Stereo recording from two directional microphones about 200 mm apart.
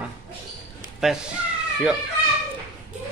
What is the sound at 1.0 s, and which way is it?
Speech, centre (ahead or behind).